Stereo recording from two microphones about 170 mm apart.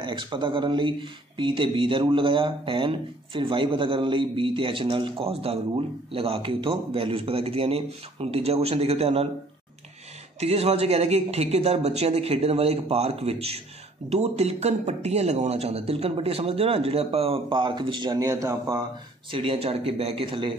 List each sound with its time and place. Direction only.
0.0 s a man's voice: 30° right (ahead or behind)
10.4 s speech: 35° right (ahead or behind); by 18.8 s 20° right (ahead or behind)
19.3 s speech: 35° right (ahead or behind)